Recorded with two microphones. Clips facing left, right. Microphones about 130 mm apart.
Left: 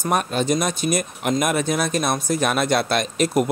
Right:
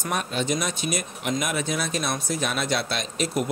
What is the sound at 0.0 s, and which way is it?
Speech, 45° left (ahead or behind).